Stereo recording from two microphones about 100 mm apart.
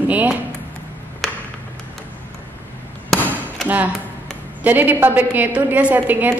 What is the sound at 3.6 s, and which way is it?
A woman's voice, 15° right (ahead or behind).